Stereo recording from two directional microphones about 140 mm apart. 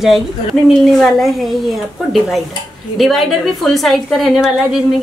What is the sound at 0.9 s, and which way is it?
A woman's voice, centre (ahead or behind).